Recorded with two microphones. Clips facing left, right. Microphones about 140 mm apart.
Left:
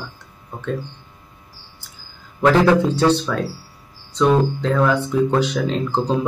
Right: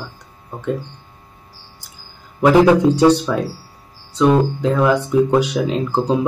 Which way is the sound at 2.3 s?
15° right (ahead or behind).